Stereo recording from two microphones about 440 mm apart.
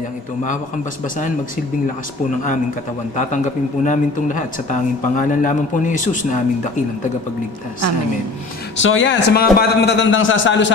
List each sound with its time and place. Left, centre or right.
3.8 s speech: centre
8.7 s a man's voice: left